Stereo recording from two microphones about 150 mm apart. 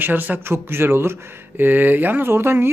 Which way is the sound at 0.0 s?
10° right (ahead or behind).